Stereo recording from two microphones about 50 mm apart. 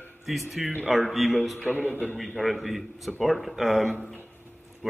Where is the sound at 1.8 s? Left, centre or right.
Left.